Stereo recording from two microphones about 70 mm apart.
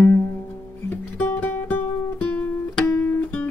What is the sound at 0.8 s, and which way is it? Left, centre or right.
Music, left.